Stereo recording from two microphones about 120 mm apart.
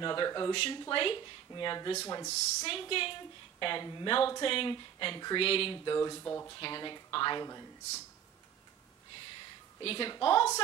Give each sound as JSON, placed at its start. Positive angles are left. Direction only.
{"t": 0.0, "sound": "speech", "side_deg": 40}
{"t": 2.0, "sound": "speech", "side_deg": 30}
{"t": 2.6, "sound": "a woman's voice", "side_deg": 50}
{"t": 5.9, "sound": "speech", "side_deg": 25}
{"t": 6.6, "sound": "speech", "side_deg": 40}
{"t": 9.8, "sound": "speech", "side_deg": 45}